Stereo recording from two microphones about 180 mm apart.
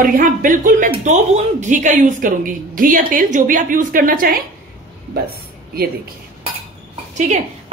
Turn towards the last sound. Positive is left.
turn(degrees=-40)  # may be behind; listen again after turning